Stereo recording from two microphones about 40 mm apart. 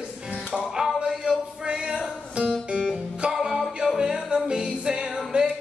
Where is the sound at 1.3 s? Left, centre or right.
Right.